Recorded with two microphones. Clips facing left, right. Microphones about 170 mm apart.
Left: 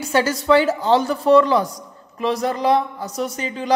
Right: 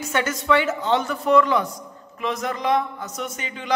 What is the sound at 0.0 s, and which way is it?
A woman's voice, 35° left (ahead or behind).